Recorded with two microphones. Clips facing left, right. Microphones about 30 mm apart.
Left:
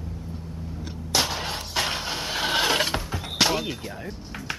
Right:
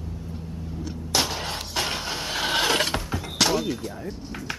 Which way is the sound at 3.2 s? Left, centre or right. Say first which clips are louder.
Left 1 dB; centre.